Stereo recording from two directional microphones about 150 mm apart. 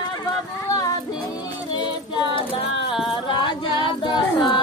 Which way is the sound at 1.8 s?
35° left (ahead or behind).